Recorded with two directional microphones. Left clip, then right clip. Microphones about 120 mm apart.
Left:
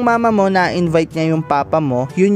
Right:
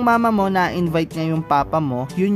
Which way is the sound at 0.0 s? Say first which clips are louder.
Left 3 dB; 35° left (ahead or behind).